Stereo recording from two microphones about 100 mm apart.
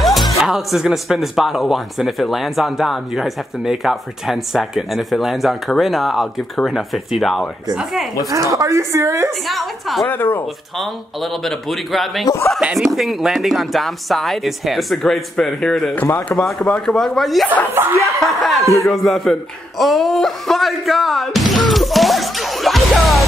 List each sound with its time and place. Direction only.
0.0 s speech: centre (ahead or behind)
8.3 s speech: 35° right (ahead or behind)
9.5 s speech: centre (ahead or behind)
10.0 s speech: 20° left (ahead or behind)
11.4 s speech: centre (ahead or behind)
17.7 s speech: 25° right (ahead or behind)
18.2 s speech: centre (ahead or behind)